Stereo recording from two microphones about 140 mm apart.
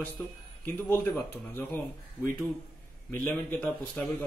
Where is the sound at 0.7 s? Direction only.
15° left (ahead or behind).